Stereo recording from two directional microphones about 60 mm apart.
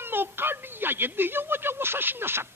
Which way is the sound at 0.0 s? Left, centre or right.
Right.